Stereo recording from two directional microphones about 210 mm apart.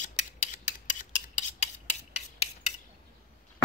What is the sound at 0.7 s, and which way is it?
Filing, 35° left (ahead or behind).